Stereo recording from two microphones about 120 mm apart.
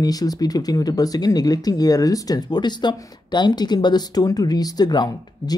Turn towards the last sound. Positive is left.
turn(degrees=35)  # may be behind; listen again after turning